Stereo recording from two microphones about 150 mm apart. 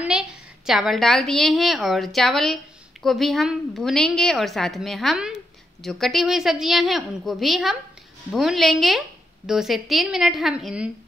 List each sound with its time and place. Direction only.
0.0 s a woman's voice: 5° right (ahead or behind)